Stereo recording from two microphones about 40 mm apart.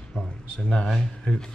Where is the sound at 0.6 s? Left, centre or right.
Centre.